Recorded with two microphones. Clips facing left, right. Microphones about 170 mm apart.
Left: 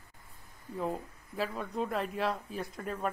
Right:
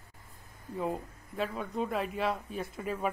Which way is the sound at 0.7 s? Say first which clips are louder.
Right 1 dB; centre (ahead or behind).